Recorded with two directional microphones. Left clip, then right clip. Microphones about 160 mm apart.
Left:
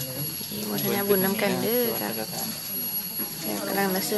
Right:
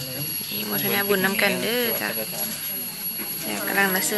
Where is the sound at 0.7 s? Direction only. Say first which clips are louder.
Right 2 dB; 10° left (ahead or behind).